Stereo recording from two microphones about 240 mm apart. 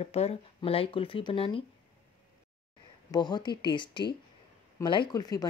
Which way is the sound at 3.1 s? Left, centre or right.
Centre.